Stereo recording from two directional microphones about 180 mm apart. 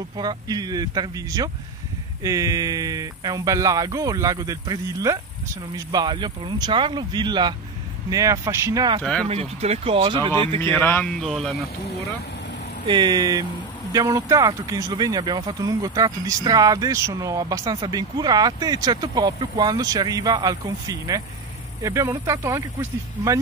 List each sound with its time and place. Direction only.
0.2 s speech: 20° right (ahead or behind)
9.0 s speech: 5° left (ahead or behind)
9.3 s speech: 35° right (ahead or behind)
10.6 s speech: 10° left (ahead or behind)
12.8 s speech: 25° right (ahead or behind)